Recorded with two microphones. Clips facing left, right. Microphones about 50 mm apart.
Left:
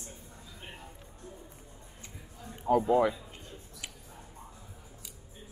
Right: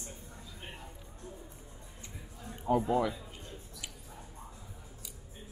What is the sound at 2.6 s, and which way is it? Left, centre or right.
Speech, centre.